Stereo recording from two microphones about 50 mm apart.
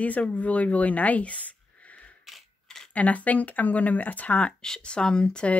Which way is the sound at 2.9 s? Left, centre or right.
Left.